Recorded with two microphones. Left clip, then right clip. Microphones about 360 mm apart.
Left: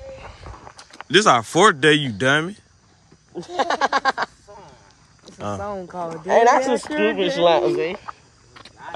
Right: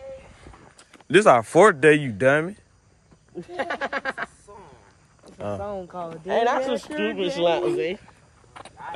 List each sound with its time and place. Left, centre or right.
1.0 s speech: centre
3.3 s speech: centre
4.5 s a sound: centre
5.6 s speech: left
8.5 s vehicle: centre